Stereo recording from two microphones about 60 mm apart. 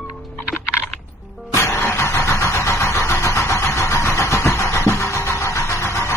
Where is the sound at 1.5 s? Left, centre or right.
Left.